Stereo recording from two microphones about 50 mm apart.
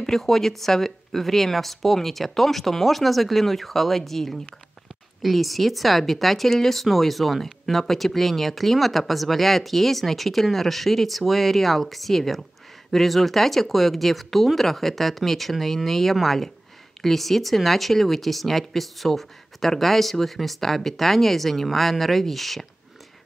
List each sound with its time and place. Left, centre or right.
0.0 s speech: centre